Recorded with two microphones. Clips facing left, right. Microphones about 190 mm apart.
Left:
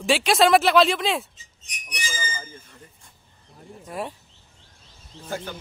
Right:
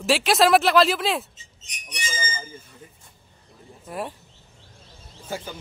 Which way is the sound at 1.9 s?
25° right (ahead or behind).